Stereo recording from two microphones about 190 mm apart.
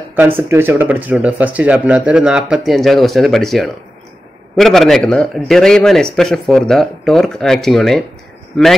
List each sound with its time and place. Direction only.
0.1 s speech: 10° right (ahead or behind)